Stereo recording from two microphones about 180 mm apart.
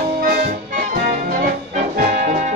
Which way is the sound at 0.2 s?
50° right (ahead or behind).